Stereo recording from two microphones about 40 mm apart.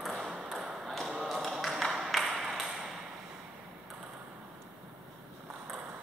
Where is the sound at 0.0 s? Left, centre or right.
Centre.